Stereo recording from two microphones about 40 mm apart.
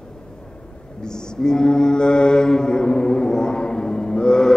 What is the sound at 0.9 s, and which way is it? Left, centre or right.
Mantra, centre.